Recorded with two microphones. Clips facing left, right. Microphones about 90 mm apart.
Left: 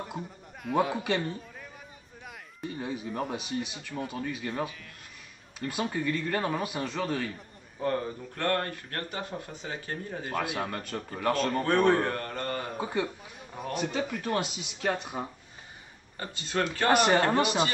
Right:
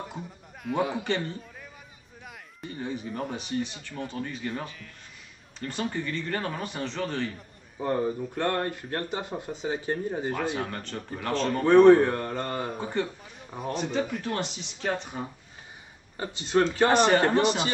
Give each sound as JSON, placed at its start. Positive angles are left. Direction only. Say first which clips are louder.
{"t": 0.7, "sound": "a man's voice", "louder": "even", "side_deg": 0}
{"t": 7.8, "sound": "speech", "louder": "right 3 dB", "side_deg": -20}
{"t": 10.4, "sound": "speech", "louder": "right 2 dB", "side_deg": 5}
{"t": 11.6, "sound": "speech", "louder": "right 10 dB", "side_deg": -20}
{"t": 12.7, "sound": "a man's voice", "louder": "right 1 dB", "side_deg": 5}
{"t": 16.2, "sound": "speech", "louder": "right 6 dB", "side_deg": -20}
{"t": 16.9, "sound": "speech", "louder": "left 1 dB", "side_deg": 10}